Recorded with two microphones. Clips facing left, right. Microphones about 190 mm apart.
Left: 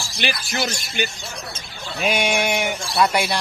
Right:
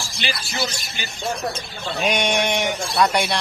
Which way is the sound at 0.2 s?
60° left (ahead or behind).